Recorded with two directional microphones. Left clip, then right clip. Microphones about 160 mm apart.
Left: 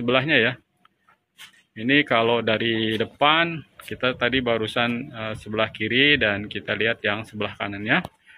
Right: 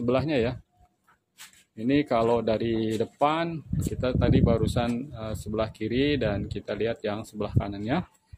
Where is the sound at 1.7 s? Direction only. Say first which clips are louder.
Left 5 dB; 20° right (ahead or behind).